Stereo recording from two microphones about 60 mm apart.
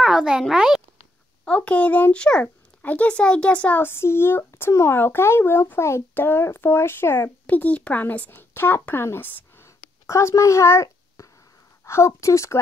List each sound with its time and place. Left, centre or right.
0.0 s a child's voice: centre
1.4 s a child's voice: left
2.4 s speech: left
3.8 s speech: left
7.4 s speech: left
8.3 s speech: left